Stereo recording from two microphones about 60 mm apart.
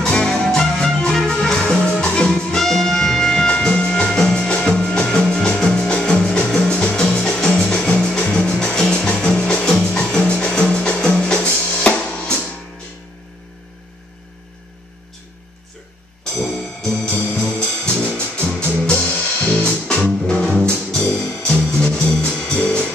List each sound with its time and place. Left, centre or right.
0.0 s music: centre
11.4 s drum kit: left
16.3 s music: centre